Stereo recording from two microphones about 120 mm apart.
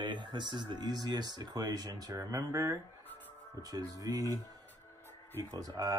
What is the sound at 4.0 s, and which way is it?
Speech, 30° right (ahead or behind).